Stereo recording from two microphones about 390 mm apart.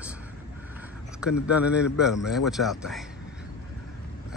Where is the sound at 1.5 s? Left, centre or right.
Centre.